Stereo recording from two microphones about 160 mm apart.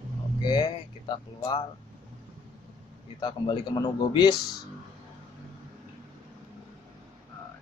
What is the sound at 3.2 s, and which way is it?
Speech, 30° left (ahead or behind).